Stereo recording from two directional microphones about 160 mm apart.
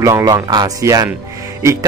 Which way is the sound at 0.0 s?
20° right (ahead or behind).